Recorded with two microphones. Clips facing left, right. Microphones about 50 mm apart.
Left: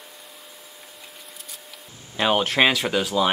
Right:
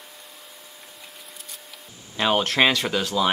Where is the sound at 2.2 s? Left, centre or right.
Centre.